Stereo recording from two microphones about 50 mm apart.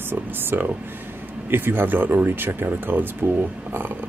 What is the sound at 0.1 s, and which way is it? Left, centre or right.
Speech, right.